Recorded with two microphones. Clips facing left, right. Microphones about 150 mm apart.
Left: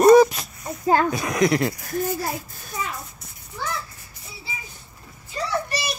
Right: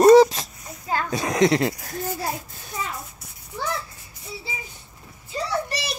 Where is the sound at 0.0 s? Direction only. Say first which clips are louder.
Right 1 dB; 30° right (ahead or behind).